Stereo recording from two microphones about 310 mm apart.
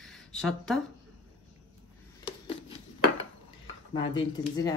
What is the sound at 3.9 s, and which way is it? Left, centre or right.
Speech, centre.